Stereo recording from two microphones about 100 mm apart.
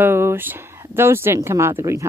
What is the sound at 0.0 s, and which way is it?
Speech, 25° right (ahead or behind).